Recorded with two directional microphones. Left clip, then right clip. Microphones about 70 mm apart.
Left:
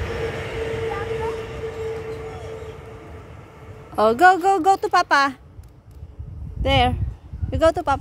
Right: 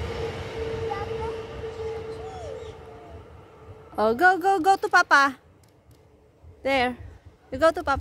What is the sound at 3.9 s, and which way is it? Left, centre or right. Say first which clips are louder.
Speech: left 5 dB; right.